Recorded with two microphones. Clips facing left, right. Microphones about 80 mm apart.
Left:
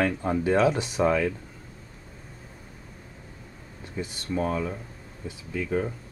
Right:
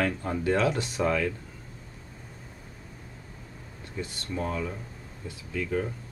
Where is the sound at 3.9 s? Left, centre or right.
Centre.